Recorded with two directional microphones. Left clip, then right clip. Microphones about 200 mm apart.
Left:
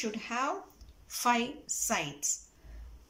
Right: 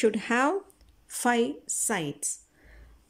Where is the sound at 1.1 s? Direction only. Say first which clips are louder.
Right 3 dB; 35° right (ahead or behind).